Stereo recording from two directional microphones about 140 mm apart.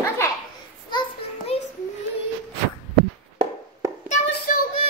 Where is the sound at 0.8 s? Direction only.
40° left (ahead or behind).